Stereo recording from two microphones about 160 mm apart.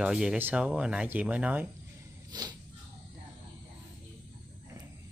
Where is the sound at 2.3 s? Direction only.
25° right (ahead or behind).